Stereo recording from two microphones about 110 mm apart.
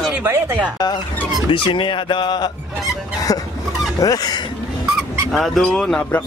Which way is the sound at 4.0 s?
35° left (ahead or behind).